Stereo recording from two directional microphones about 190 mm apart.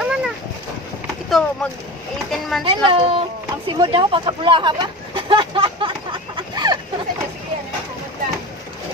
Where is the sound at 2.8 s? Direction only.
30° right (ahead or behind).